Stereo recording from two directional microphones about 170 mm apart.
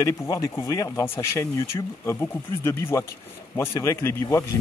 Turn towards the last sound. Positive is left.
turn(degrees=15)  # may be behind; listen again after turning